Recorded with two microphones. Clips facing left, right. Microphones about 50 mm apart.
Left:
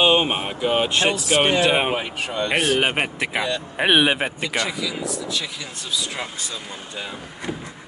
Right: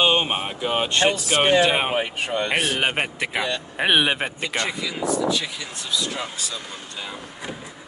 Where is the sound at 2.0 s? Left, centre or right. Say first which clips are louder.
Right 1 dB; right.